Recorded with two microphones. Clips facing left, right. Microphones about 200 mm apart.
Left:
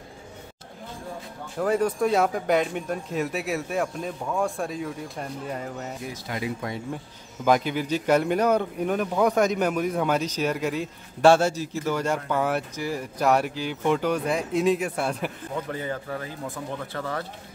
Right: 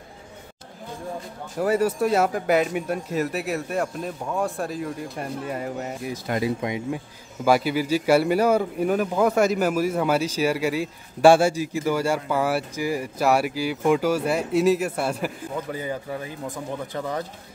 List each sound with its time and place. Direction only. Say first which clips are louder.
1.6 s speech: right 2 dB; 5° right (ahead or behind)
6.3 s speech: right 7 dB; 55° right (ahead or behind)
6.6 s a man's voice: right 4 dB; 15° right (ahead or behind)